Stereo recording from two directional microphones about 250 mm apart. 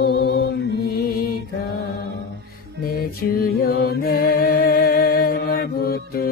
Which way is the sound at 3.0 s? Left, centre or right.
Left.